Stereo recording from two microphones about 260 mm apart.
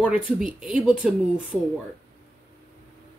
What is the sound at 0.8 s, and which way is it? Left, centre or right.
Speech, centre.